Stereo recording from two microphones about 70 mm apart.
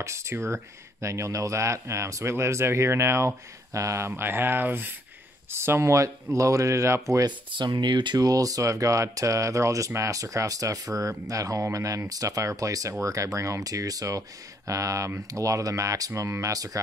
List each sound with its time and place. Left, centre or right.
0.0 s speech: right
4.1 s speech: right
7.2 s speech: right